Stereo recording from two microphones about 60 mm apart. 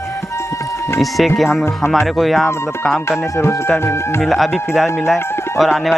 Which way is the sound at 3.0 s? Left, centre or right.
Left.